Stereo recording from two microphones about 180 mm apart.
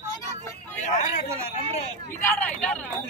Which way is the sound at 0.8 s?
40° left (ahead or behind).